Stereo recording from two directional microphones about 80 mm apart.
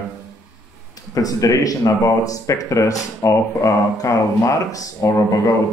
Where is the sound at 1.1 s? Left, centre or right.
Left.